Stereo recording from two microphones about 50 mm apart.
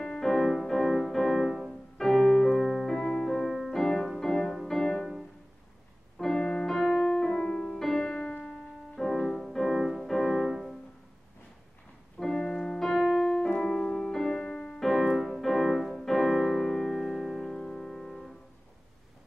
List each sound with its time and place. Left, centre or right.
0.0 s music: centre
3.0 s music: centre
3.3 s music: centre
6.1 s music: centre
6.4 s piano: centre
8.5 s music: centre
12.2 s piano: centre
13.2 s music: centre